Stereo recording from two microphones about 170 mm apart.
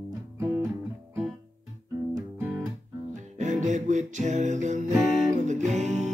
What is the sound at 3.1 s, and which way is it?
Music, 45° right (ahead or behind).